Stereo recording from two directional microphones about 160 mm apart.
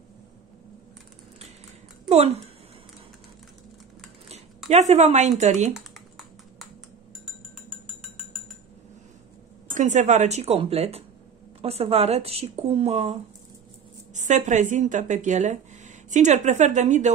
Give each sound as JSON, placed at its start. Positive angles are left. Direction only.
{"t": 2.0, "sound": "speech", "side_deg": -40}
{"t": 4.6, "sound": "a woman's voice", "side_deg": -45}
{"t": 5.7, "sound": "typing", "side_deg": 0}
{"t": 9.8, "sound": "a woman's voice", "side_deg": -50}